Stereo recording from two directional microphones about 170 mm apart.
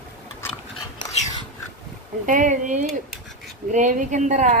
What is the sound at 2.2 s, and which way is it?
Speech, 50° right (ahead or behind).